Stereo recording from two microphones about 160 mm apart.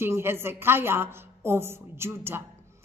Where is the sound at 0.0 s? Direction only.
15° right (ahead or behind).